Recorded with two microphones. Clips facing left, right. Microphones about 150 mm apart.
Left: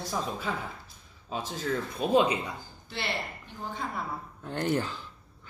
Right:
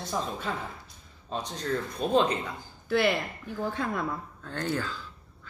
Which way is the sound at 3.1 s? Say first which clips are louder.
Right 4 dB; 90° right.